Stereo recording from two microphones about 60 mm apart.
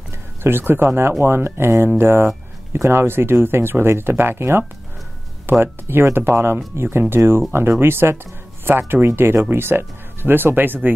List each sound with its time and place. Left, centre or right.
0.4 s speech: right